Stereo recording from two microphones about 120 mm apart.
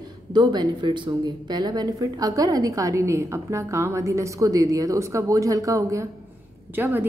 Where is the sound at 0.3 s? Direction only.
35° right (ahead or behind).